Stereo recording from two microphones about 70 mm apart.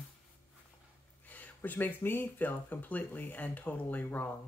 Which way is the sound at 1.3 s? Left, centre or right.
Left.